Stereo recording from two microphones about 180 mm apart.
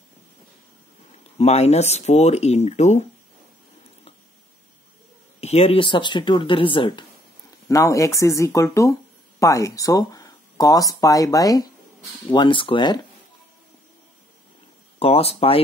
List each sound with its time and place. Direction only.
1.4 s speech: 35° left (ahead or behind)
5.4 s speech: 35° left (ahead or behind)
7.6 s speech: 15° left (ahead or behind)
15.0 s speech: 35° left (ahead or behind)